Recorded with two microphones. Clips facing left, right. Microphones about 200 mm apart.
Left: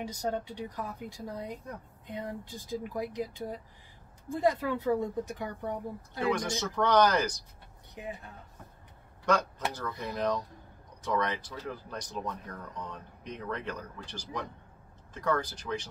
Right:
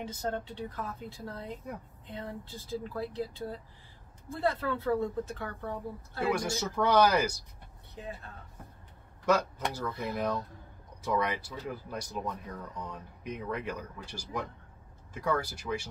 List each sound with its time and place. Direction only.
0.0 s a woman's voice: 15° left (ahead or behind)
6.3 s speech: 10° right (ahead or behind)
7.9 s speech: 15° left (ahead or behind)
9.3 s speech: 5° right (ahead or behind)